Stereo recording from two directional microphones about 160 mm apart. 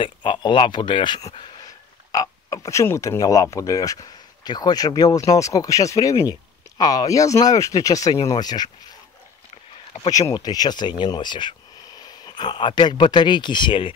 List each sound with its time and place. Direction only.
0.0 s speech: 30° left (ahead or behind)
10.3 s speech: 25° left (ahead or behind)